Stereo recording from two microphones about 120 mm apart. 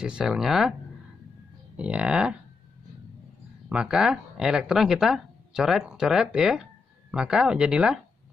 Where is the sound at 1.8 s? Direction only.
5° right (ahead or behind).